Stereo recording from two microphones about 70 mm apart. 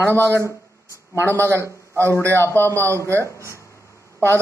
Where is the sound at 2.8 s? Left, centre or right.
Right.